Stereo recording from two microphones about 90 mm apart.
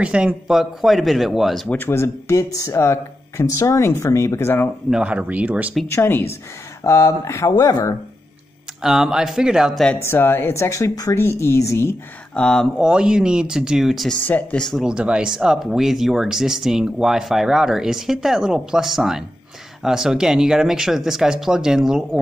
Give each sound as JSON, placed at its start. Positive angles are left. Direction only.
{"t": 0.0, "sound": "speech", "side_deg": -15}
{"t": 1.7, "sound": "speech", "side_deg": 25}
{"t": 4.8, "sound": "speech", "side_deg": -10}
{"t": 5.9, "sound": "speech", "side_deg": 25}
{"t": 8.8, "sound": "speech", "side_deg": -5}
{"t": 10.0, "sound": "speech", "side_deg": 25}
{"t": 12.4, "sound": "speech", "side_deg": 10}
{"t": 12.7, "sound": "speech", "side_deg": -10}
{"t": 14.2, "sound": "speech", "side_deg": 20}
{"t": 14.8, "sound": "speech", "side_deg": -10}